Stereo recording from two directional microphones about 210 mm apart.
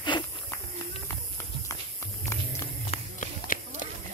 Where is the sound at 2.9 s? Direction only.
40° left (ahead or behind).